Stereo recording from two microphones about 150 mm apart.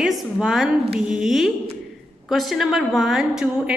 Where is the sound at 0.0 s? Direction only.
Centre (ahead or behind).